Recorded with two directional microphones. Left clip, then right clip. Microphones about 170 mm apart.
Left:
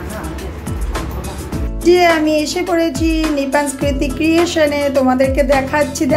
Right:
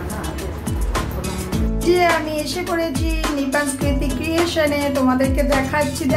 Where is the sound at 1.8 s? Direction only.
30° left (ahead or behind).